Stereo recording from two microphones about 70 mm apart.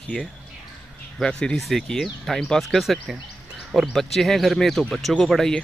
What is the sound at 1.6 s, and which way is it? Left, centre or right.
Speech, centre.